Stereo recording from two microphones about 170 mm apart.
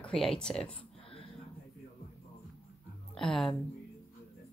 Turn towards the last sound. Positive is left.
turn(degrees=5)  # may be behind; listen again after turning